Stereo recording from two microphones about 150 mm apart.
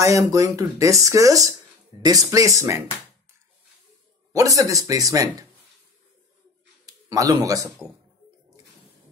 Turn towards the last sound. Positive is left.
turn(degrees=-25)  # may be behind; listen again after turning